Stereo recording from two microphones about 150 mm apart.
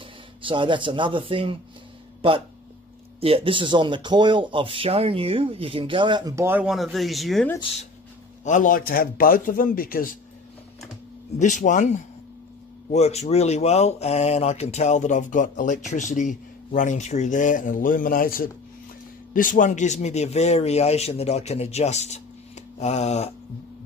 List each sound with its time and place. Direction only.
0.4 s speech: 35° right (ahead or behind)
3.2 s speech: 40° right (ahead or behind); by 6.6 s 20° right (ahead or behind)
6.6 s speech: centre (ahead or behind)
8.5 s a man's voice: 60° left (ahead or behind)
11.3 s speech: 55° left (ahead or behind)
12.9 s speech: 45° left (ahead or behind)